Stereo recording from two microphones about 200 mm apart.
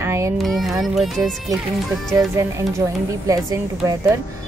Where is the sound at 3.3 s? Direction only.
15° right (ahead or behind).